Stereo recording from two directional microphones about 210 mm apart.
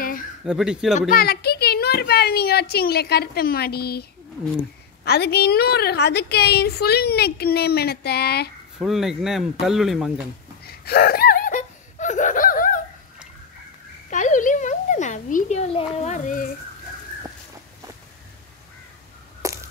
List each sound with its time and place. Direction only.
0.5 s speech: 5° right (ahead or behind)
1.1 s a woman's voice: 50° left (ahead or behind)
5.0 s a woman's voice: 50° left (ahead or behind)
8.7 s speech: centre (ahead or behind)
10.7 s laughter: 45° left (ahead or behind)
14.1 s a sound: 35° left (ahead or behind)
15.9 s speech: 30° left (ahead or behind)
19.4 s a sound: 15° right (ahead or behind)